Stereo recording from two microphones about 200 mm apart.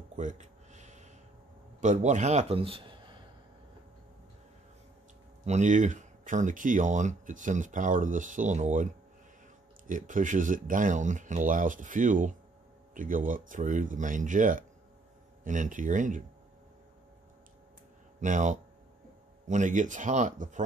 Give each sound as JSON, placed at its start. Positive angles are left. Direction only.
{"t": 0.1, "sound": "a sound", "side_deg": -35}
{"t": 1.8, "sound": "a man's voice", "side_deg": -35}
{"t": 5.4, "sound": "speech", "side_deg": -35}
{"t": 9.8, "sound": "speech", "side_deg": -40}
{"t": 18.2, "sound": "speech", "side_deg": -40}